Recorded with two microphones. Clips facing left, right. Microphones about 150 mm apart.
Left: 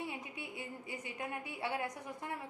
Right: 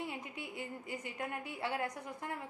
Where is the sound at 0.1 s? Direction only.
15° left (ahead or behind).